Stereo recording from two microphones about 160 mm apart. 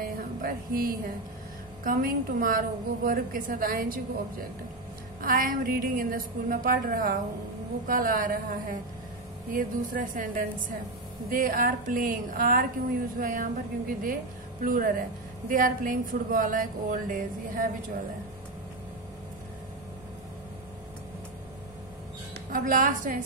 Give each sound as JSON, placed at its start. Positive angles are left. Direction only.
{"t": 0.0, "sound": "a sound", "side_deg": -65}
{"t": 1.9, "sound": "a woman's voice", "side_deg": -60}
{"t": 5.2, "sound": "a woman's voice", "side_deg": -60}
{"t": 22.5, "sound": "a woman's voice", "side_deg": -60}